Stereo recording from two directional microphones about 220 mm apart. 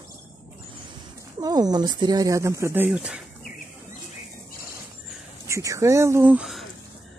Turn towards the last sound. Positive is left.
turn(degrees=-5)  # may be behind; listen again after turning